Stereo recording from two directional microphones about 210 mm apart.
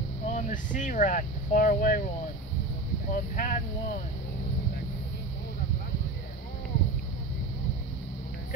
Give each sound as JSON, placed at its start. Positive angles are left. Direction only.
{"t": 0.3, "sound": "speech", "side_deg": 40}
{"t": 3.1, "sound": "speech", "side_deg": 40}